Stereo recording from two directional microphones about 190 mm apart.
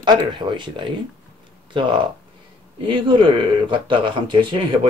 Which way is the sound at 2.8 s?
25° right (ahead or behind).